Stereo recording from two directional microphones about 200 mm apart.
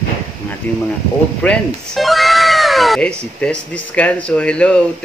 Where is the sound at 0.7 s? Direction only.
5° left (ahead or behind).